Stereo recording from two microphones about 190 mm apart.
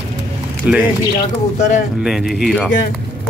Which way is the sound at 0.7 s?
5° right (ahead or behind).